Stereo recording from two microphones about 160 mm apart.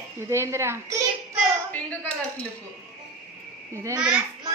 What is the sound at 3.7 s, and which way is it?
Speech, 20° right (ahead or behind).